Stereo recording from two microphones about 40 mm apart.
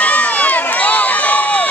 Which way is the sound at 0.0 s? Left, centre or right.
Left.